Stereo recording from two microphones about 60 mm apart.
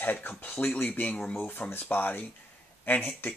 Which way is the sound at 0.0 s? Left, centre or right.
Left.